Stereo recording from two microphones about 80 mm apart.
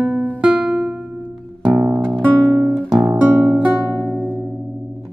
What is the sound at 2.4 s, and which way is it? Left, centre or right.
Guitar, right.